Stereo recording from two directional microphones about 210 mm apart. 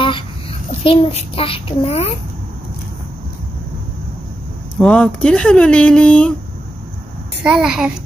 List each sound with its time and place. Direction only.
0.0 s child singing: 25° left (ahead or behind)
4.7 s speech: 5° left (ahead or behind)
7.4 s speech: 5° right (ahead or behind)